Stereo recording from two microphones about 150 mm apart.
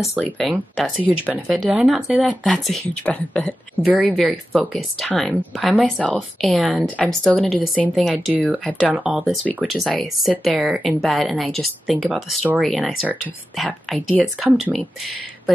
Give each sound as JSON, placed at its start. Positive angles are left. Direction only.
{"t": 0.1, "sound": "speech", "side_deg": 0}
{"t": 3.8, "sound": "speech", "side_deg": -5}